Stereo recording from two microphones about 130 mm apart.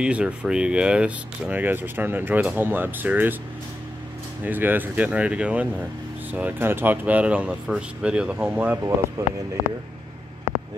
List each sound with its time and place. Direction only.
0.0 s speech: 10° right (ahead or behind)
4.5 s speech: 15° right (ahead or behind)
9.2 s speech: 25° right (ahead or behind)